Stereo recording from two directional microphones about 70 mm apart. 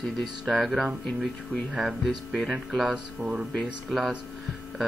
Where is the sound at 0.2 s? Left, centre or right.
Centre.